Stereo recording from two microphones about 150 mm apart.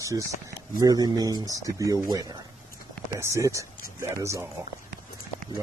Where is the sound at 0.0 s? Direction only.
20° right (ahead or behind).